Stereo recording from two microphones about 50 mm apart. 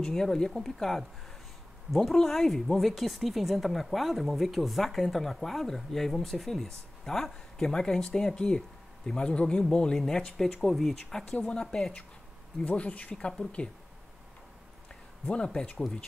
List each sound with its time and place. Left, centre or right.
0.0 s speech: centre
12.6 s speech: left